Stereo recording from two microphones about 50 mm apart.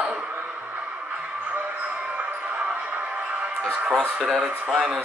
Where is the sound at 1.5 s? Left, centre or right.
Right.